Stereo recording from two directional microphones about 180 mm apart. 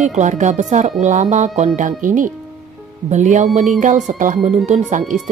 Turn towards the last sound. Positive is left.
turn(degrees=-40)  # may be behind; listen again after turning